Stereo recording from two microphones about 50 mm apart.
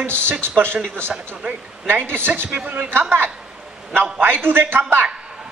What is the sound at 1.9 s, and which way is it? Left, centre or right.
Speech, right.